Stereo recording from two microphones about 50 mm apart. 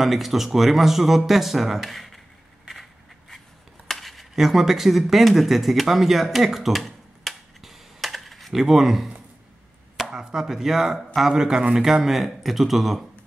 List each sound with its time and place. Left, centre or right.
0.0 s speech: centre
2.7 s scrape: centre
3.8 s a sound: centre
10.1 s speech: centre